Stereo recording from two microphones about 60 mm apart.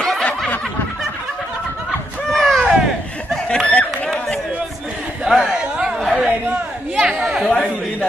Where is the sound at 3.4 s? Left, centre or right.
Centre.